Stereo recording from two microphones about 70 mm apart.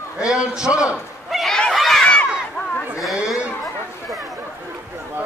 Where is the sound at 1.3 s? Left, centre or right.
Centre.